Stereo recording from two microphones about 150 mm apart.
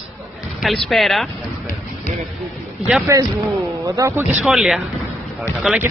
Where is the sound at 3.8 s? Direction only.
20° right (ahead or behind).